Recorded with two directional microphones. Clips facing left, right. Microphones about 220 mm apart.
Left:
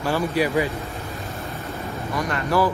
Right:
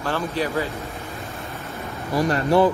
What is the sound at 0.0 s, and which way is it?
Speech, 15° left (ahead or behind).